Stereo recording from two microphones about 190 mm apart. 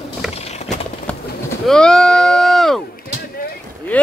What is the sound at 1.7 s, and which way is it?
Bleat, 5° left (ahead or behind).